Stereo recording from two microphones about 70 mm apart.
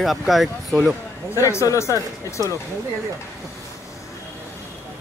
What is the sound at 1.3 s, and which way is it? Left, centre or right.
Speech, left.